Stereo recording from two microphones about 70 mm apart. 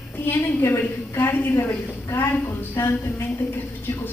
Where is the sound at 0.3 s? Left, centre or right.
Left.